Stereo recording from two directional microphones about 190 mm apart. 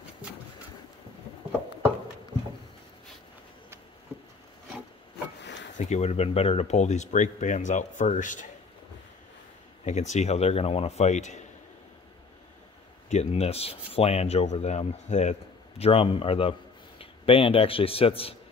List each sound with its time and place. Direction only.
5.4 s wood: 70° left (ahead or behind)
5.8 s speech: 35° left (ahead or behind)
9.8 s speech: 40° left (ahead or behind)
13.1 s a man's voice: 35° left (ahead or behind)